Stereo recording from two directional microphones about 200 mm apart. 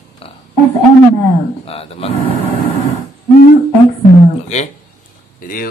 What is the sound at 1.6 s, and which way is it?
Speech, 30° left (ahead or behind).